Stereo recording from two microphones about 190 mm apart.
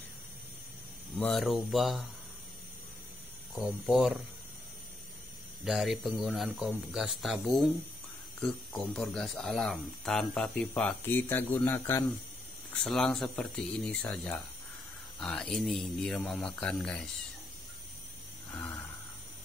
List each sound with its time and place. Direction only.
1.1 s speech: centre (ahead or behind)
3.5 s speech: centre (ahead or behind)
5.7 s a man's voice: centre (ahead or behind)